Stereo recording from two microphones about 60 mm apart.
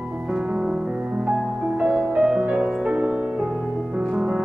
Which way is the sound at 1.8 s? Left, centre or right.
Right.